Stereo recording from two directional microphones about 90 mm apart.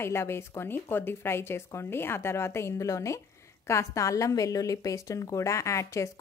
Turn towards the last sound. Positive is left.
turn(degrees=35)  # may be behind; listen again after turning